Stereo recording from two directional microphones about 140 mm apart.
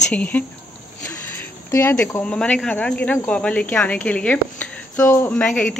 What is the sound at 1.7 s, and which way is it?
Speech, 20° left (ahead or behind).